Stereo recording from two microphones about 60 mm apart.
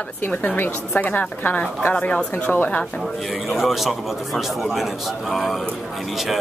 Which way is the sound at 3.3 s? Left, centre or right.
Centre.